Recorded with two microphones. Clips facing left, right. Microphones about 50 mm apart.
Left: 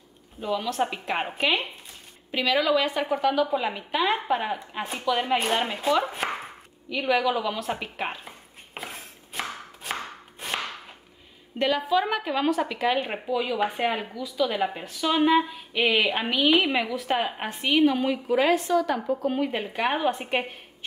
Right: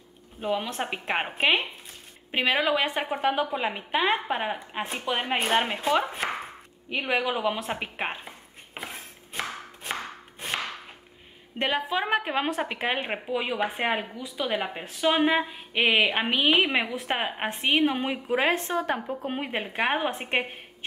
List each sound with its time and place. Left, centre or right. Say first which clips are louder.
0.4 s a woman's voice: left 2 dB; right
5.8 s chopping: left 1 dB; centre
6.9 s a woman's voice: left 3 dB; right
8.7 s a sound: even; centre
11.5 s a woman's voice: left 4 dB; right